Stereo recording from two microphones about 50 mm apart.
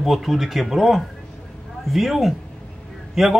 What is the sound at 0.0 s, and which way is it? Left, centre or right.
A man's voice, centre.